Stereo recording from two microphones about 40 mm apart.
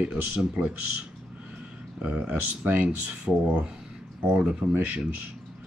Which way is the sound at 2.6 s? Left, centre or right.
Right.